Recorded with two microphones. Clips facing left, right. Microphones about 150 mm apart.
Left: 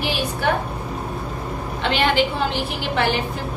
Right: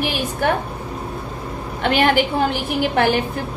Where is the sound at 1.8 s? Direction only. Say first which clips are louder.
Right 3 dB; 50° right (ahead or behind).